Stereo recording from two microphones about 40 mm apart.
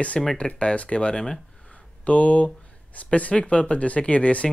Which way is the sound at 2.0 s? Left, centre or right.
Left.